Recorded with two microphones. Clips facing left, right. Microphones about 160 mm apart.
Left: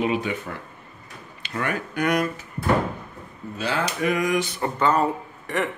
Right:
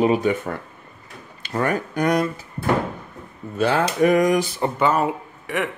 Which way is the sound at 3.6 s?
45° right (ahead or behind).